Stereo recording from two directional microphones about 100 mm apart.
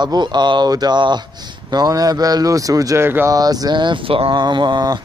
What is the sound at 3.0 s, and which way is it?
Speech, 25° right (ahead or behind).